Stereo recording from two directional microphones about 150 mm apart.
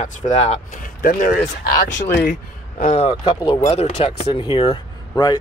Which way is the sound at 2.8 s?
50° left (ahead or behind).